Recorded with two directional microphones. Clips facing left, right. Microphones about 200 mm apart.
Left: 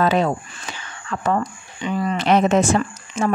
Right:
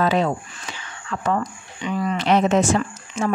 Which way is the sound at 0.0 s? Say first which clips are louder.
Left 1 dB; 50° left (ahead or behind).